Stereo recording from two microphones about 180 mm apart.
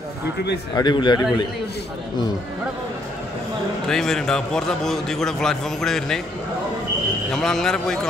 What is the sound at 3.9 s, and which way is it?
A man's voice, 5° left (ahead or behind).